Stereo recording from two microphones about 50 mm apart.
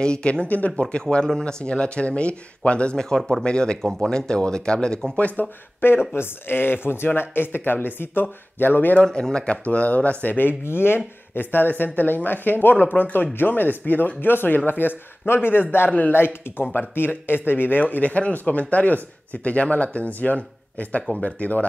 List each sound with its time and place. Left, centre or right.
0.0 s speech: centre
0.5 s speech: left
0.7 s speech: centre
3.2 s speech: centre
3.4 s speech: centre
5.1 s speech: left
5.8 s speech: left
9.2 s speech: centre; by 10.5 s left
10.6 s speech: left
11.3 s speech: left